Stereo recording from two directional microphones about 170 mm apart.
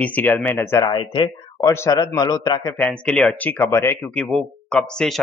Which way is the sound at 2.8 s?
5° left (ahead or behind).